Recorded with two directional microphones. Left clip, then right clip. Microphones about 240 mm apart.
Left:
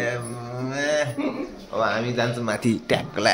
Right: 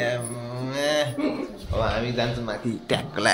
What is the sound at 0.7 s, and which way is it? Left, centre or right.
Cattle, centre.